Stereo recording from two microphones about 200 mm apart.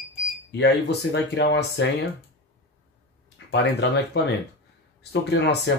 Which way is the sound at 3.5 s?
60° left (ahead or behind).